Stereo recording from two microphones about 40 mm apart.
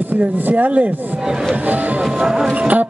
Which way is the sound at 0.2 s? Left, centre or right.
Right.